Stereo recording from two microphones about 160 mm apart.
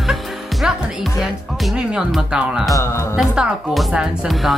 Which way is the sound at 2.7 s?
20° left (ahead or behind).